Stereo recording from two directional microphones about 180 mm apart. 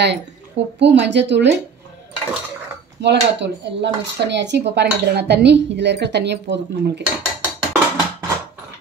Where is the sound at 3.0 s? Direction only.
75° right (ahead or behind).